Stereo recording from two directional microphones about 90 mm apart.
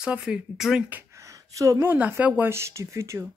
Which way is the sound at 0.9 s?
30° right (ahead or behind).